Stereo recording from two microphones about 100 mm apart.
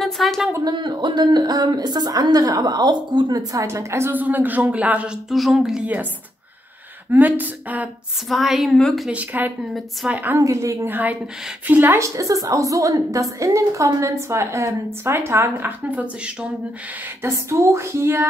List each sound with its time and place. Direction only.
0.0 s a sound: centre (ahead or behind)
0.7 s a woman's voice: 50° right (ahead or behind)
3.5 s a woman's voice: 30° right (ahead or behind); by 6.0 s 10° right (ahead or behind)
7.1 s a woman's voice: 15° right (ahead or behind)
8.3 s a woman's voice: centre (ahead or behind)
9.1 s a woman's voice: 15° right (ahead or behind)
10.4 s a woman's voice: 30° right (ahead or behind); by 16.4 s 15° right (ahead or behind)
17.2 s a woman's voice: 30° right (ahead or behind)